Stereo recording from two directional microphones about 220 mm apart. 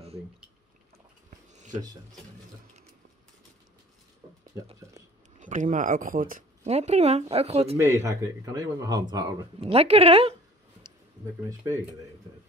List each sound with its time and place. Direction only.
1.5 s a sound: 35° right (ahead or behind)
5.4 s speech: 35° right (ahead or behind)
7.7 s speech: 10° right (ahead or behind)